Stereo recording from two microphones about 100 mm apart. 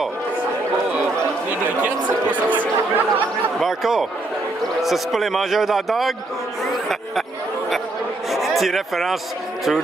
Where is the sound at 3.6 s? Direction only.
Centre (ahead or behind).